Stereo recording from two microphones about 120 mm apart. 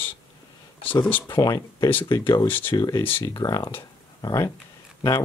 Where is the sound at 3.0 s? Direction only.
15° left (ahead or behind).